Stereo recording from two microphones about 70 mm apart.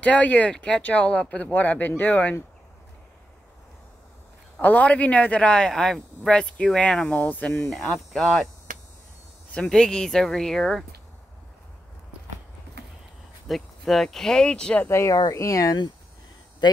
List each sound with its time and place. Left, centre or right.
0.0 s a man's voice: centre
4.6 s a man's voice: left
7.7 s speech: centre
9.5 s a man's voice: centre
13.5 s a man's voice: centre
14.9 s speech: left
15.1 s speech: left